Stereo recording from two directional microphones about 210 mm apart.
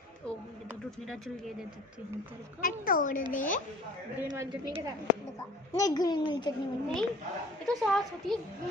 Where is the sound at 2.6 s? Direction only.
40° left (ahead or behind).